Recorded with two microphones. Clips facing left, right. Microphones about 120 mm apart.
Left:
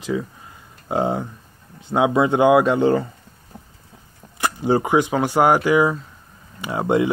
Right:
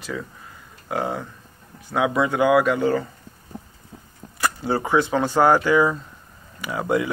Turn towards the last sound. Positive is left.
turn(degrees=25)  # may be behind; listen again after turning